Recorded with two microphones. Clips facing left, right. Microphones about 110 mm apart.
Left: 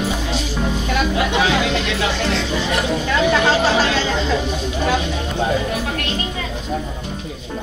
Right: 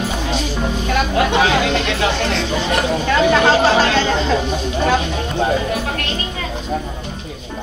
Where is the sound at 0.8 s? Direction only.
50° right (ahead or behind).